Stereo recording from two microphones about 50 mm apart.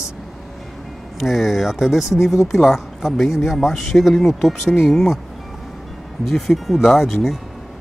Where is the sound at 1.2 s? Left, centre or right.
Centre.